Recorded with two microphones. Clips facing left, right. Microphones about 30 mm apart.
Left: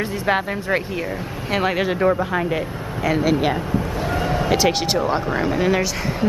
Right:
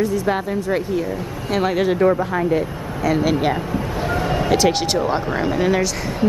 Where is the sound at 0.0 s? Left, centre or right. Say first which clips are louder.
Right 1 dB; left.